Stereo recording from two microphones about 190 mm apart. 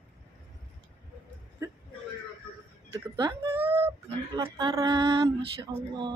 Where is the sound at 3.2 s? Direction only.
25° right (ahead or behind).